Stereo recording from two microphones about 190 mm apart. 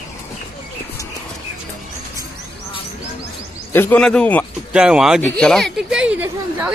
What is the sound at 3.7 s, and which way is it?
Speech, 10° left (ahead or behind).